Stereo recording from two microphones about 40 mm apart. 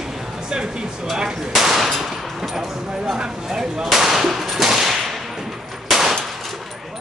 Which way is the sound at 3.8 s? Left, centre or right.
Centre.